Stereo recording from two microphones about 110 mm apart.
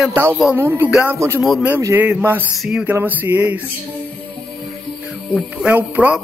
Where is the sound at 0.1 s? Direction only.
20° right (ahead or behind).